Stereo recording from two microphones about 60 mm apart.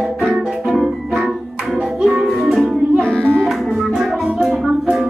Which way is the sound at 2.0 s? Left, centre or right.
Centre.